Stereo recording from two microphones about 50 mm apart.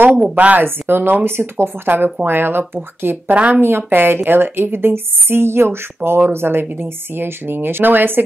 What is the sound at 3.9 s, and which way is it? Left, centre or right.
Speech, right.